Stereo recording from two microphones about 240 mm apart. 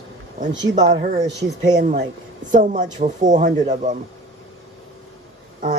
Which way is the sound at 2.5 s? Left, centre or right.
Right.